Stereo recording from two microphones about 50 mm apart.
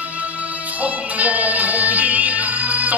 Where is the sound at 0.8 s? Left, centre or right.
Right.